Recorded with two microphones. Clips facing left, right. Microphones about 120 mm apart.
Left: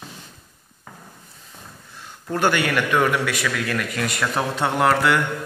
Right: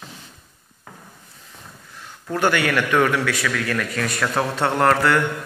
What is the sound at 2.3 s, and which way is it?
Speech, 25° left (ahead or behind).